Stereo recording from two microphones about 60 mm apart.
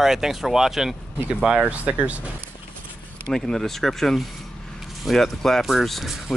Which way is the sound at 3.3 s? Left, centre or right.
Centre.